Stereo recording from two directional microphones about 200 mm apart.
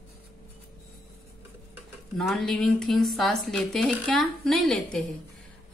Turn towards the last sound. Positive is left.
turn(degrees=5)  # may be behind; listen again after turning